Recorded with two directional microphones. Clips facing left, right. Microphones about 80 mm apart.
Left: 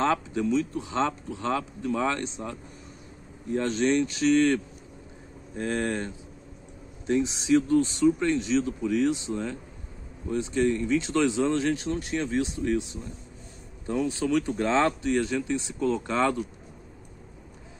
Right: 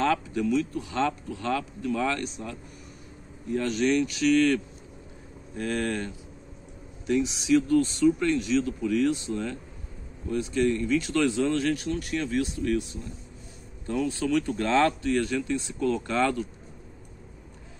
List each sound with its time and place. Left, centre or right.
0.0 s speech: left
3.5 s speech: left
5.6 s speech: left